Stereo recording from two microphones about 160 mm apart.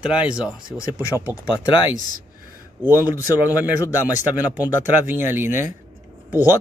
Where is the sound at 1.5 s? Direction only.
25° left (ahead or behind).